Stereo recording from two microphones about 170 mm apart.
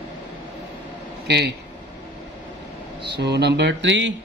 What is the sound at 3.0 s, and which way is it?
Speech, 80° right.